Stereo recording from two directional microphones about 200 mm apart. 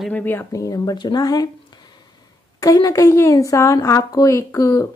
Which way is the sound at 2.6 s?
15° left (ahead or behind).